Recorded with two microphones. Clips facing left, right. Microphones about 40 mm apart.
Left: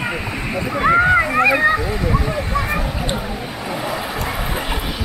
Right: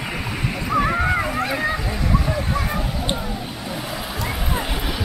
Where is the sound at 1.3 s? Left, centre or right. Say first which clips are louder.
Left 9 dB; left.